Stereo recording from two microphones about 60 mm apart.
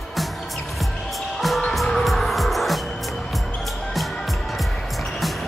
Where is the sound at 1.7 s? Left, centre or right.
Centre.